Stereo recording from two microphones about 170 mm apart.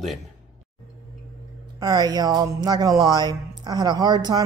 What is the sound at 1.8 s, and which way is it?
Speech, 25° right (ahead or behind).